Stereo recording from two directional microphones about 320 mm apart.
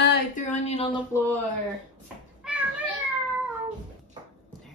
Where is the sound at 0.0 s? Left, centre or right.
Left.